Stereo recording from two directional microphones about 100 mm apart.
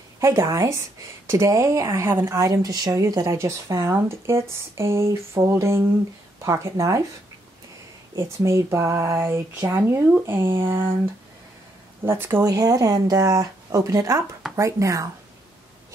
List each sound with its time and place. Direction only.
0.2 s speech: 25° right (ahead or behind)
8.5 s speech: 30° right (ahead or behind)
12.0 s speech: 25° right (ahead or behind)
12.4 s speech: 35° right (ahead or behind)